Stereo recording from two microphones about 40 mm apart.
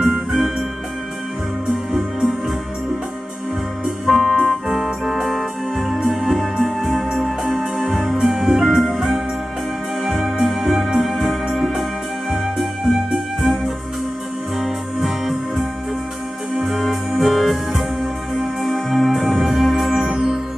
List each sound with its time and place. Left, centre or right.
0.3 s music: centre
4.0 s organ: centre
5.9 s music: centre
11.4 s organ: centre
12.3 s music: centre
14.6 s music: centre